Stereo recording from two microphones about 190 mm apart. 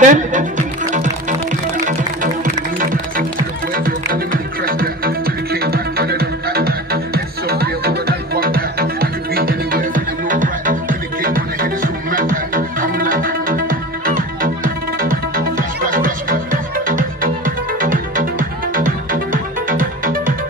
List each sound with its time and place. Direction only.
0.0 s speech: 40° right (ahead or behind)
2.4 s music: 45° right (ahead or behind)